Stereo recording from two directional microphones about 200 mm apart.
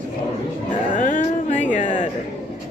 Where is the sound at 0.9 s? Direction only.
40° left (ahead or behind).